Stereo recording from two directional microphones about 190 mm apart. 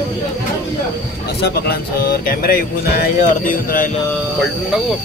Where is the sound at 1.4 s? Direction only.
55° left (ahead or behind).